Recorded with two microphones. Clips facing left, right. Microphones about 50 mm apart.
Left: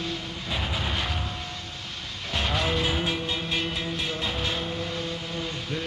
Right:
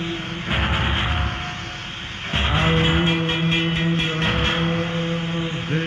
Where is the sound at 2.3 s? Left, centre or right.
Right.